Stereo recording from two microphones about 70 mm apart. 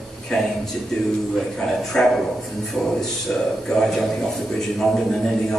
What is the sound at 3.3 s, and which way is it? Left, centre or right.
Speech, centre.